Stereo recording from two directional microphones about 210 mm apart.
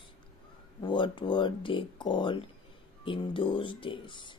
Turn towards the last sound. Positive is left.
turn(degrees=25)  # may be behind; listen again after turning